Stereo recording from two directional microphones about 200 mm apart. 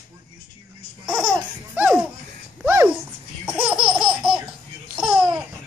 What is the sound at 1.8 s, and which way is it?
Laughter, 10° right (ahead or behind).